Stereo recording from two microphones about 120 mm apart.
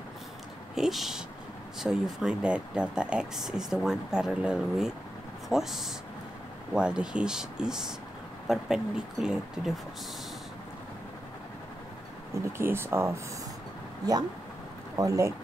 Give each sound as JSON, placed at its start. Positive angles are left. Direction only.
{"t": 0.7, "sound": "speech", "side_deg": 0}
{"t": 12.5, "sound": "speech", "side_deg": -20}
{"t": 15.0, "sound": "speech", "side_deg": -25}